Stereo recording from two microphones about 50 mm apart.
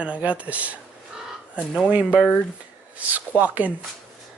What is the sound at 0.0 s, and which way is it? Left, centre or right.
Speech, right.